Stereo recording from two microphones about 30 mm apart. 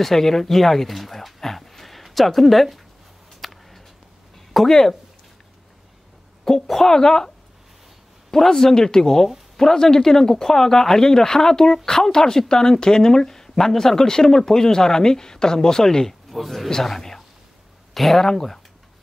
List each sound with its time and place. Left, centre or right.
0.0 s speech: centre
1.4 s a sound: centre
2.1 s speech: centre
3.3 s a sound: centre
4.6 s speech: centre
6.4 s speech: centre
16.3 s a man's voice: centre
18.2 s speech: centre